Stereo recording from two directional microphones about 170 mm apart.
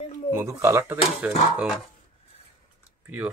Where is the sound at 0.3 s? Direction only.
15° right (ahead or behind).